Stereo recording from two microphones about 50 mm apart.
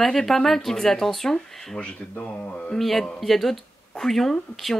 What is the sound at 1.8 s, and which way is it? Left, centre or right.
Speech, left.